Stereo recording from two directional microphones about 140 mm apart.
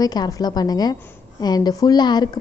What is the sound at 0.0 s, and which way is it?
A woman's voice, 30° left (ahead or behind).